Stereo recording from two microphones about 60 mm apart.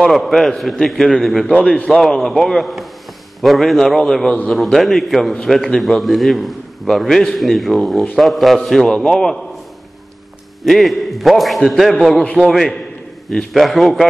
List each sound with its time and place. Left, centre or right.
0.1 s a man's voice: centre
1.5 s a man's voice: centre
1.9 s a man's voice: centre
10.6 s a man's voice: centre